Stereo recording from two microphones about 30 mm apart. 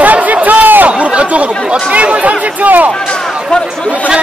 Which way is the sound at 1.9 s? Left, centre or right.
Right.